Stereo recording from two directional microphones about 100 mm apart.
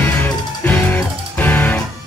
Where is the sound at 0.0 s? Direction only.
20° left (ahead or behind).